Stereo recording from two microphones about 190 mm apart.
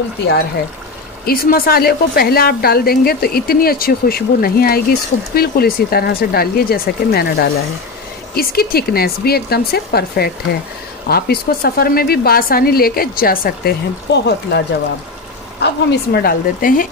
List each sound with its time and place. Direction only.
1.2 s a woman's voice: 50° left (ahead or behind)
15.6 s a woman's voice: 55° left (ahead or behind)